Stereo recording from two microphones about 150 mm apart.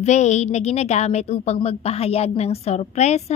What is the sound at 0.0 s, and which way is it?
A woman's voice, 50° left (ahead or behind).